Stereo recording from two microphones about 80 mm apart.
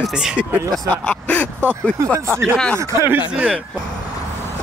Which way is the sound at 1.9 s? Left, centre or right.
Right.